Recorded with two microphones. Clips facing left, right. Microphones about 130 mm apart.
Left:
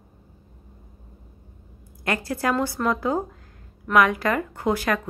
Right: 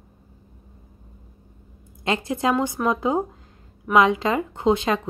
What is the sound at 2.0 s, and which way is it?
A woman's voice, 20° right (ahead or behind).